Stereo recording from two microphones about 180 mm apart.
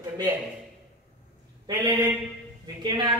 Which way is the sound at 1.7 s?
10° right (ahead or behind).